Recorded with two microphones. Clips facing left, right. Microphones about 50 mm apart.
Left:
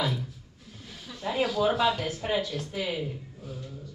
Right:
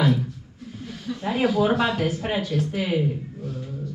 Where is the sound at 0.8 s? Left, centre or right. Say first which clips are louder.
Right 12 dB; centre.